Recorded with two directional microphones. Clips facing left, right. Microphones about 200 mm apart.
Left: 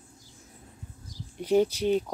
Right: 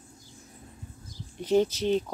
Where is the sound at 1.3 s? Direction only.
10° left (ahead or behind).